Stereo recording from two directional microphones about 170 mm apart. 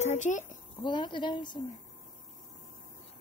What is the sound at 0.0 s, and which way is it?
Speech, 45° left (ahead or behind).